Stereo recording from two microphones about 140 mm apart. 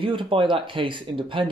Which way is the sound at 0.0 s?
35° right (ahead or behind).